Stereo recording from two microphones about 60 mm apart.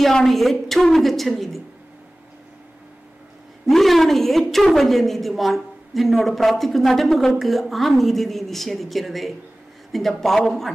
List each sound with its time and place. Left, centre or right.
0.0 s a woman's voice: centre
3.6 s a woman's voice: centre